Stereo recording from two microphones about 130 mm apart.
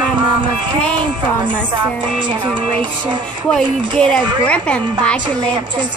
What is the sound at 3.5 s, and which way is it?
A woman's voice, 5° left (ahead or behind).